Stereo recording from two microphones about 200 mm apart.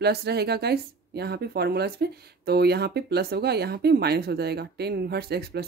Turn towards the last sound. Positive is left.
turn(degrees=-55)  # may be behind; listen again after turning